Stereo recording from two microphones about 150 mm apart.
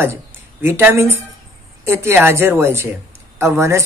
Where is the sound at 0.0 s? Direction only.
15° right (ahead or behind).